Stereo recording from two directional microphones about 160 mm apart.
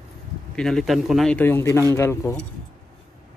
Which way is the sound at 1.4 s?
15° left (ahead or behind).